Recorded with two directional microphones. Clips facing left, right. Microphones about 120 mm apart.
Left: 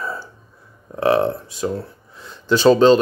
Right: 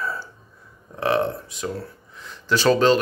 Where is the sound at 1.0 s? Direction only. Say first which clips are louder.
Left 5 dB; 30° left (ahead or behind).